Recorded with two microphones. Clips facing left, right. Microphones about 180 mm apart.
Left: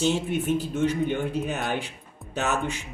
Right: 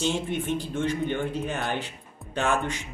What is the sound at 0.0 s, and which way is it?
Speech, 5° left (ahead or behind).